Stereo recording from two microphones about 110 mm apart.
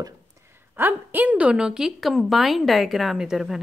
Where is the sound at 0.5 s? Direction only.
20° right (ahead or behind).